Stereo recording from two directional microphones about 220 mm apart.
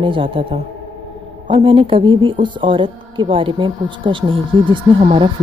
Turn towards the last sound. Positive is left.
turn(degrees=-20)  # may be behind; listen again after turning